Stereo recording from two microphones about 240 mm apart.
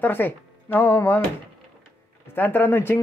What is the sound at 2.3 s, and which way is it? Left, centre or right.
Speech, centre.